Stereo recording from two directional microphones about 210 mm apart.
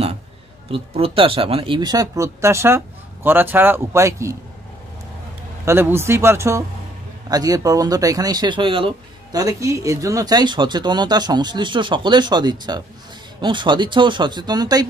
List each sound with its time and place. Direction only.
0.7 s speech: 25° right (ahead or behind)
5.7 s speech: 10° right (ahead or behind)